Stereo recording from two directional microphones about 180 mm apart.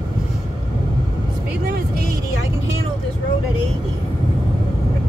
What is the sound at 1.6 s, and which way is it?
Vehicle, 60° right (ahead or behind).